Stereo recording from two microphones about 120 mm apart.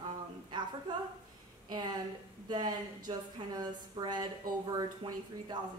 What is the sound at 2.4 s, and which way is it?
Speech, 35° right (ahead or behind).